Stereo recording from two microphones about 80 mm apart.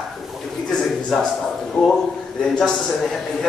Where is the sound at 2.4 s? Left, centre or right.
Centre.